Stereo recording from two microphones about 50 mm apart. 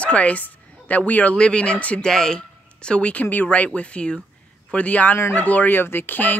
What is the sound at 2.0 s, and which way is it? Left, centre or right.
Speech, centre.